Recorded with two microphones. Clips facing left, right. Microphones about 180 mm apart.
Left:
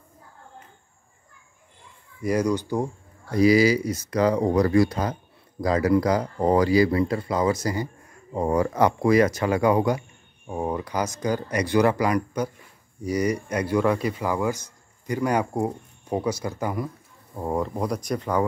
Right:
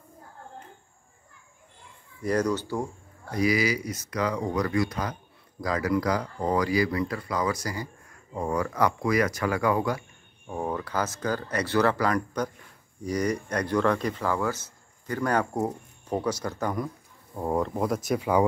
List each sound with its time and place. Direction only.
2.2 s speech: 10° left (ahead or behind); by 18.4 s 5° right (ahead or behind)